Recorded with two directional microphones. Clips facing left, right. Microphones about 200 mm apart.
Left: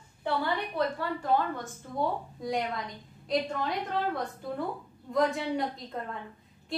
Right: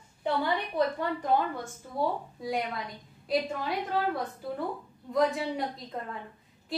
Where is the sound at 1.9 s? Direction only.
Centre (ahead or behind).